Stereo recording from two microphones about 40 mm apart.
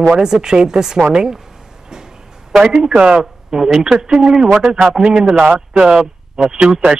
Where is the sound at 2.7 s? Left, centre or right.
Centre.